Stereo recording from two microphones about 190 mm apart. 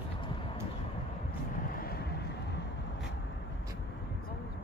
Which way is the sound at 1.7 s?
50° left (ahead or behind).